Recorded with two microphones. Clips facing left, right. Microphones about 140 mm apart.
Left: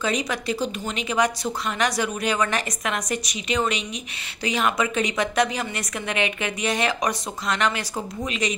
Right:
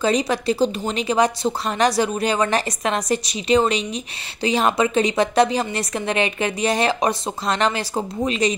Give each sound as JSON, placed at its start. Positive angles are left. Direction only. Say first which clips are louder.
{"t": 0.0, "sound": "a woman's voice", "louder": "right 6 dB", "side_deg": -35}